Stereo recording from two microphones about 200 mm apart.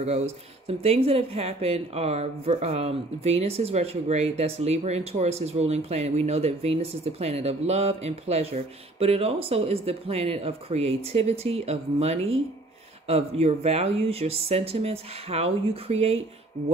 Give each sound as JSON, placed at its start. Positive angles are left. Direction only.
{"t": 0.7, "sound": "speech", "side_deg": -30}